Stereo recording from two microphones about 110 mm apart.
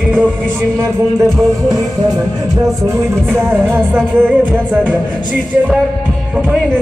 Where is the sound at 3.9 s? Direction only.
15° right (ahead or behind).